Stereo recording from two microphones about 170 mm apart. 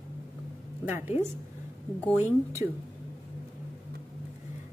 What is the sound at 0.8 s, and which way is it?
Speech, 10° right (ahead or behind).